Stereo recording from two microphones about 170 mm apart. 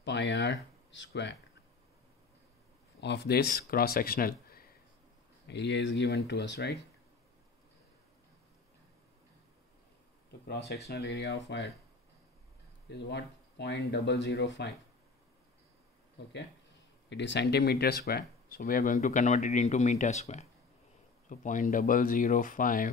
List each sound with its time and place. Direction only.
0.0 s speech: 90° left
3.0 s speech: 80° left; by 4.6 s 60° left (ahead or behind)
5.5 s speech: 90° left
10.4 s speech: 65° left (ahead or behind)
12.8 s speech: 85° left
17.1 s speech: 90° left; by 18.9 s 60° left (ahead or behind)
18.9 s speech: 45° left (ahead or behind)